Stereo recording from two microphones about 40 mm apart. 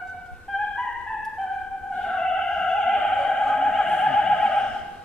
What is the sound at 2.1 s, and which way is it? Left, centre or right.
Opera, centre.